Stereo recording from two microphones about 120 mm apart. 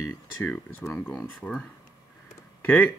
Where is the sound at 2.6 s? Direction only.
15° left (ahead or behind).